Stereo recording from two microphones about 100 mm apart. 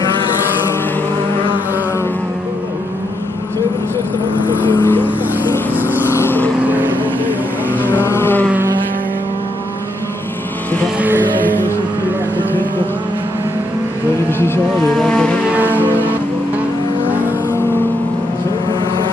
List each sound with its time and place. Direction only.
4.8 s vehicle: 20° left (ahead or behind)
6.1 s vehicle: 20° left (ahead or behind)
6.6 s vehicle: 15° right (ahead or behind)
7.8 s a sound: 20° left (ahead or behind)
11.0 s vehicle: 20° right (ahead or behind)
14.4 s vehicle: 25° left (ahead or behind)
14.9 s vehicle: 10° left (ahead or behind)